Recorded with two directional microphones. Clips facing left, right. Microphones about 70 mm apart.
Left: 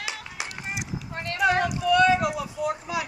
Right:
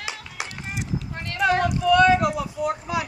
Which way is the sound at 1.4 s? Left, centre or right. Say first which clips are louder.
Right 2 dB; centre.